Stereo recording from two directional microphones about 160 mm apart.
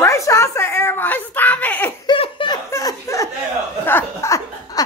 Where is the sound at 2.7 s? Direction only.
20° left (ahead or behind).